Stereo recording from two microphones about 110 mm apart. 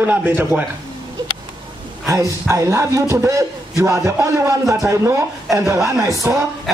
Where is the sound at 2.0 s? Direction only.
30° right (ahead or behind).